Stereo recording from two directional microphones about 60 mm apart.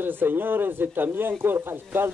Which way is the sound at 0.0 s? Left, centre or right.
Right.